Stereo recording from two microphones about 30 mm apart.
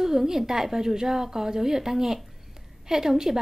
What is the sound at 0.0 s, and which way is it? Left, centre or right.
A woman's voice, centre.